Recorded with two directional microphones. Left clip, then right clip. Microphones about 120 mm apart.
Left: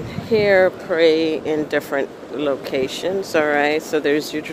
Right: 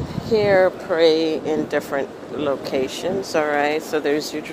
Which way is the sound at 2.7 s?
40° left (ahead or behind).